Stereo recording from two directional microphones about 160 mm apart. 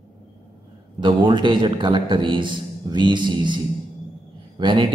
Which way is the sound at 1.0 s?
30° right (ahead or behind).